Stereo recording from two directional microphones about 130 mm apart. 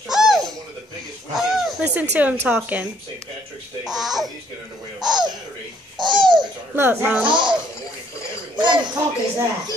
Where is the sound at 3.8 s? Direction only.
Centre (ahead or behind).